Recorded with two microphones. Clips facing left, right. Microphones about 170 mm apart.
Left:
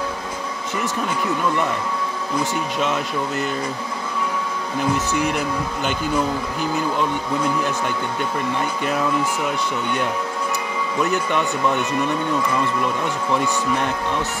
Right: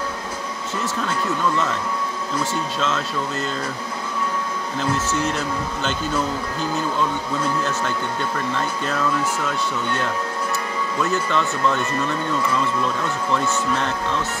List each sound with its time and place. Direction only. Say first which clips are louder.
0.7 s speech: left 1 dB; 15° left (ahead or behind)
4.7 s speech: left 2 dB; 15° left (ahead or behind)